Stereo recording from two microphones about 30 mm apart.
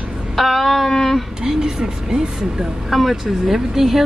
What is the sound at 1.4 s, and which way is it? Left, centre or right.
Speech, right.